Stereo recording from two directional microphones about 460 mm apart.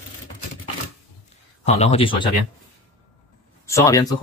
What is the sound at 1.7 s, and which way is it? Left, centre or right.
Speech, centre.